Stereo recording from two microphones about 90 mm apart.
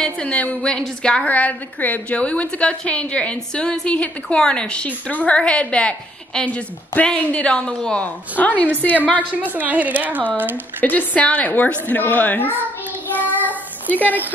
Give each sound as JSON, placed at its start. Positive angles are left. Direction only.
{"t": 0.0, "sound": "a woman's voice", "side_deg": 10}
{"t": 9.3, "sound": "speech", "side_deg": -20}
{"t": 10.5, "sound": "a woman's voice", "side_deg": 20}
{"t": 13.8, "sound": "speech", "side_deg": 20}